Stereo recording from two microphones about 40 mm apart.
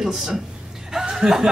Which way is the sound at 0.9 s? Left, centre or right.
Centre.